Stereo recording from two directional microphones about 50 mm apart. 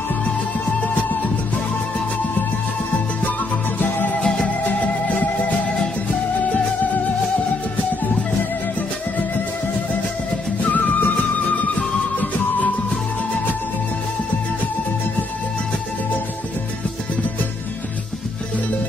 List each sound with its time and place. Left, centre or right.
4.2 s music: centre
4.6 s music: left
10.6 s music: left